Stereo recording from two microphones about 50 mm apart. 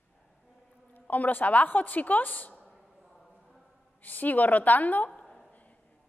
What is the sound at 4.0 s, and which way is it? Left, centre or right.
A woman's voice, left.